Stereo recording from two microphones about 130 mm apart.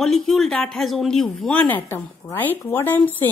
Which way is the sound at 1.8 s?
15° left (ahead or behind).